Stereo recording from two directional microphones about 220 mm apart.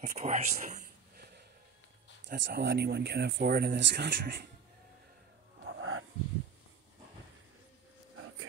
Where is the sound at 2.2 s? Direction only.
50° right (ahead or behind).